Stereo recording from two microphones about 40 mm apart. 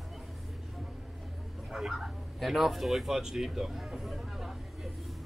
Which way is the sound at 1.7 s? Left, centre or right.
Centre.